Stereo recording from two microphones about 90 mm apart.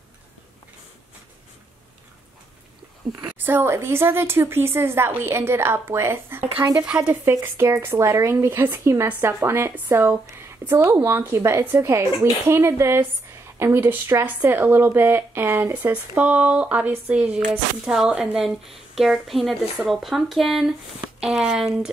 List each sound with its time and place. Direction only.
3.3 s speech: 20° right (ahead or behind)
6.8 s speech: 10° right (ahead or behind)
7.2 s speech: 25° right (ahead or behind); by 21.9 s 5° right (ahead or behind)